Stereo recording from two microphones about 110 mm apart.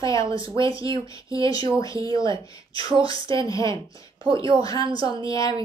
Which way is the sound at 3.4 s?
30° left (ahead or behind).